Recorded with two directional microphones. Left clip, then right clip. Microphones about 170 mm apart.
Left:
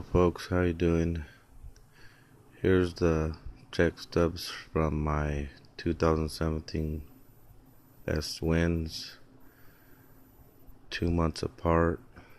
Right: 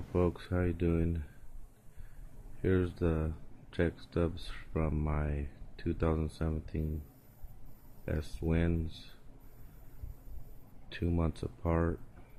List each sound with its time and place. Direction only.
0.1 s speech: 25° left (ahead or behind)
2.6 s speech: 25° left (ahead or behind)
8.0 s speech: 25° left (ahead or behind)
10.9 s speech: 25° left (ahead or behind)